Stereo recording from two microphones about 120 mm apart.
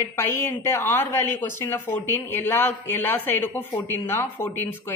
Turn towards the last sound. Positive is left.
turn(degrees=20)  # may be behind; listen again after turning